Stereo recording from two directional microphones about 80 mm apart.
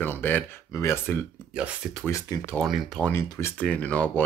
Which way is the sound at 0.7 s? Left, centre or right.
Left.